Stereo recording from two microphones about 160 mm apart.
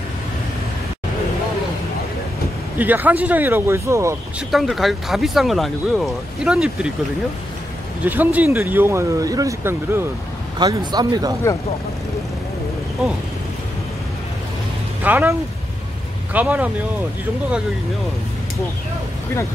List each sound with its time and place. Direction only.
2.8 s speech: 10° right (ahead or behind)
4.5 s speech: centre (ahead or behind)
8.0 s speech: 10° right (ahead or behind)
10.6 s speech: 25° right (ahead or behind)
15.0 s speech: 10° right (ahead or behind)
16.3 s speech: 10° right (ahead or behind)